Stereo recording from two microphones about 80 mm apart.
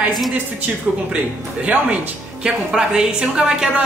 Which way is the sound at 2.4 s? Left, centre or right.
Centre.